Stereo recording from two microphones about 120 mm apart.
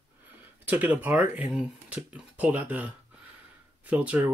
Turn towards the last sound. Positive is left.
turn(degrees=-15)  # may be behind; listen again after turning